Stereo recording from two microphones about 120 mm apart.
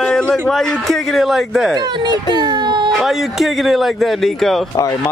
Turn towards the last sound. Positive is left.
turn(degrees=0)  # may be behind; listen again after turning